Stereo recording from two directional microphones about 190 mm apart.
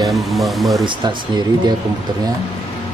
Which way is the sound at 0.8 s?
25° right (ahead or behind).